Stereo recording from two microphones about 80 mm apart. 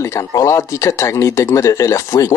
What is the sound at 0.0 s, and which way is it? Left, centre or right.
Speech, left.